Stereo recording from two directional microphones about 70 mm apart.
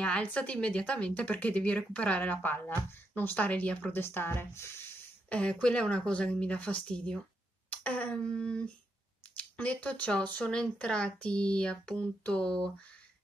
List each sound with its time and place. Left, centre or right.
0.0 s speech: centre
4.0 s speech: left
5.3 s speech: centre